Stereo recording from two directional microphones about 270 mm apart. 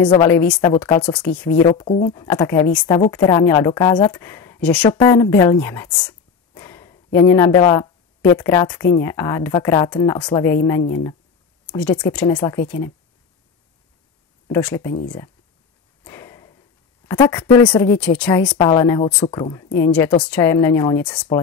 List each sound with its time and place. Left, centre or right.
0.2 s speech: centre
1.7 s speech: left
2.1 s speech: centre
11.7 s speech: centre
14.5 s speech: centre
16.0 s a sound: centre
18.5 s speech: centre